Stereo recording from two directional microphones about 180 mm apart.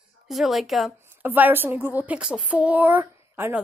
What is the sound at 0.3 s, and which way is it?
A woman's voice, centre (ahead or behind).